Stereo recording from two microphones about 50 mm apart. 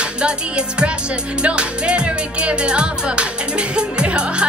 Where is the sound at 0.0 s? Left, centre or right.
Centre.